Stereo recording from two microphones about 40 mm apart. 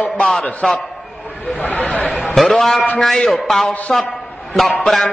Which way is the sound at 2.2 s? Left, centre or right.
Centre.